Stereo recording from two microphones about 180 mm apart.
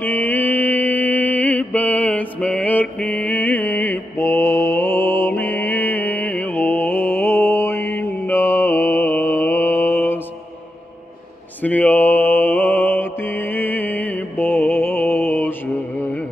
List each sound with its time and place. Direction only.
0.0 s mantra: 10° left (ahead or behind)
11.6 s mantra: 10° left (ahead or behind)